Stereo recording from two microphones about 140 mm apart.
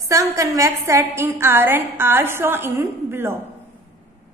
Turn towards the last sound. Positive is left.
turn(degrees=-15)  # may be behind; listen again after turning